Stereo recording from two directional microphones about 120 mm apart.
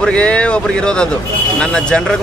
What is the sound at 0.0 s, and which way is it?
Speech, 10° left (ahead or behind).